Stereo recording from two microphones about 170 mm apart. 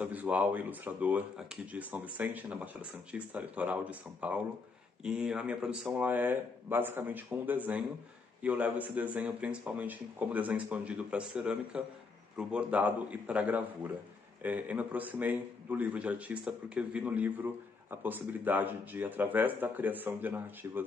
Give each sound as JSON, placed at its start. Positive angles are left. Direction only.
{"t": 0.0, "sound": "speech", "side_deg": -10}